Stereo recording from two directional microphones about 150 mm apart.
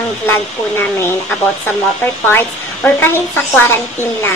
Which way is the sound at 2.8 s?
15° left (ahead or behind).